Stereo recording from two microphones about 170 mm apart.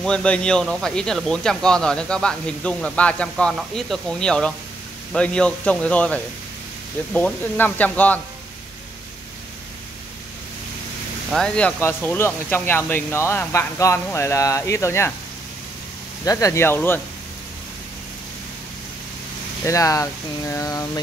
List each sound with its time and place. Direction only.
0.0 s speech: 5° left (ahead or behind)
11.3 s speech: 5° left (ahead or behind)
16.3 s speech: 20° left (ahead or behind)
19.6 s speech: 20° left (ahead or behind)